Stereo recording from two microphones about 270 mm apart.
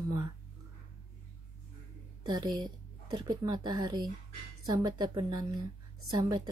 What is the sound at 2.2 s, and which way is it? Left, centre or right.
Speech, centre.